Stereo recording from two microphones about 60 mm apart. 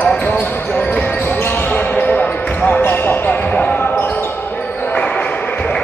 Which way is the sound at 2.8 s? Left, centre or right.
Left.